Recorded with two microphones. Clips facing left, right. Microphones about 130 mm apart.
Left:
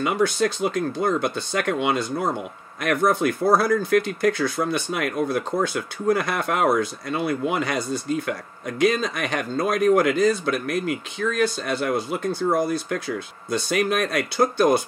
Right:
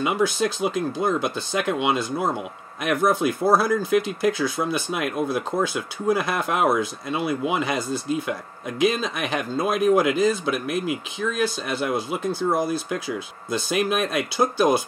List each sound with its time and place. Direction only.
0.0 s speech: 5° right (ahead or behind)